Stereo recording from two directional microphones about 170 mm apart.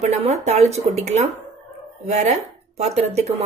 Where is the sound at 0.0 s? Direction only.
40° right (ahead or behind).